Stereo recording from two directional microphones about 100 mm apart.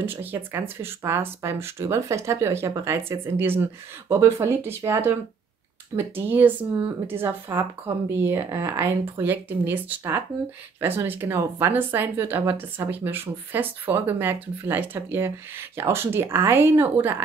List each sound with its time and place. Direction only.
0.0 s speech: 20° right (ahead or behind)